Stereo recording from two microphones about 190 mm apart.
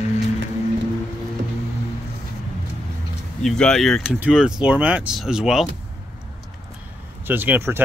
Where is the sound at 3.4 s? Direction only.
5° left (ahead or behind).